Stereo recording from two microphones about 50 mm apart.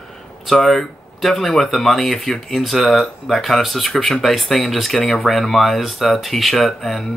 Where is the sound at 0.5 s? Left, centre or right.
Centre.